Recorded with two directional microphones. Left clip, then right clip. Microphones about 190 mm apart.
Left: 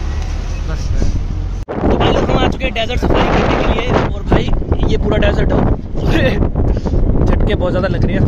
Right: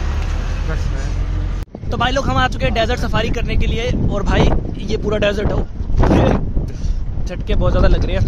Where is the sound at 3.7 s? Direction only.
20° right (ahead or behind).